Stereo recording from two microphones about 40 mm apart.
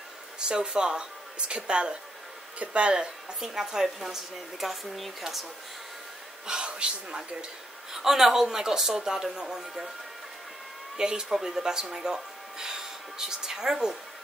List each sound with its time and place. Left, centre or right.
0.4 s speech: centre
6.4 s speech: right
7.9 s speech: centre
11.0 s speech: centre